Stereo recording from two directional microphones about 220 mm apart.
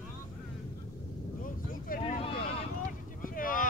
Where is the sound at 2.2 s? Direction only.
25° left (ahead or behind).